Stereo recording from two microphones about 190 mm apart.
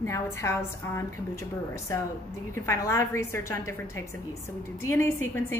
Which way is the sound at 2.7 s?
15° left (ahead or behind).